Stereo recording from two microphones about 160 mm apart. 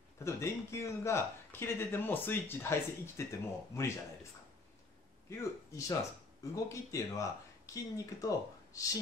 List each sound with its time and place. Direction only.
0.2 s speech: 15° left (ahead or behind)
5.3 s speech: 20° left (ahead or behind)